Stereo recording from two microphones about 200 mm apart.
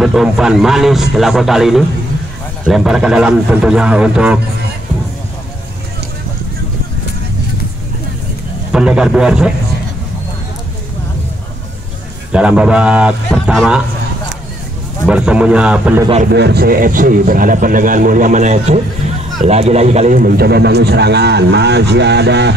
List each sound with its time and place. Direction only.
0.0 s a man's voice: centre (ahead or behind)
8.7 s a man's voice: 5° right (ahead or behind)
12.3 s a man's voice: 5° right (ahead or behind)
15.0 s a man's voice: 5° right (ahead or behind)
16.3 s a man's voice: 55° right (ahead or behind)